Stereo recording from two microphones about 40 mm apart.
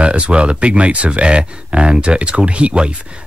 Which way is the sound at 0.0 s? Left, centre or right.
Right.